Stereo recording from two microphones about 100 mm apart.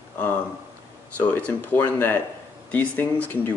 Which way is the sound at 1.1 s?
15° left (ahead or behind).